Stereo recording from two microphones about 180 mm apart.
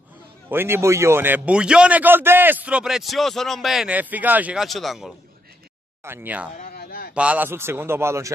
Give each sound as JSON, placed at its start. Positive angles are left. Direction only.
{"t": 0.5, "sound": "a man's voice", "side_deg": -15}
{"t": 6.0, "sound": "a man's voice", "side_deg": -10}
{"t": 6.5, "sound": "a sound", "side_deg": 55}
{"t": 7.2, "sound": "a man's voice", "side_deg": -10}